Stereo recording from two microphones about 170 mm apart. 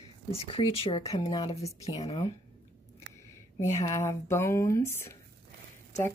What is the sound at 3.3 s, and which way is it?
Speech, 20° left (ahead or behind).